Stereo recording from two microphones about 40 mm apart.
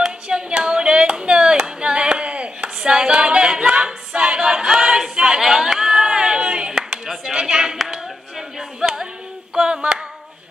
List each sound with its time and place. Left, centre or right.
0.0 s clapping: right
5.4 s a sound: centre
7.7 s clapping: centre
9.6 s singing: right